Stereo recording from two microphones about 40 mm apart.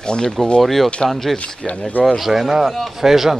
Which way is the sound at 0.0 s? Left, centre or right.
Left.